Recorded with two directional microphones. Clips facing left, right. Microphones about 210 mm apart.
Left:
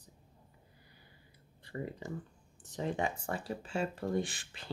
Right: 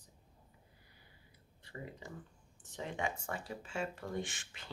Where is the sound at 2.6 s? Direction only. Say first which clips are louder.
Left 5 dB; 35° left (ahead or behind).